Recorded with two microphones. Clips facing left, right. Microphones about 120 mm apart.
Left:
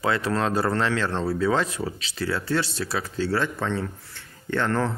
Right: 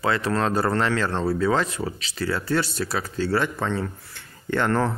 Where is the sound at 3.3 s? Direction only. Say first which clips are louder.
Right 2 dB; 10° right (ahead or behind).